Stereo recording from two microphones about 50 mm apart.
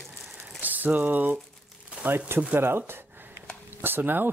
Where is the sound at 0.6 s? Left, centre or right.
Right.